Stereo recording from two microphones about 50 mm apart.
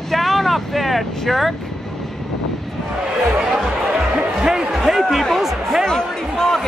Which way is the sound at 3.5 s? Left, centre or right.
Centre.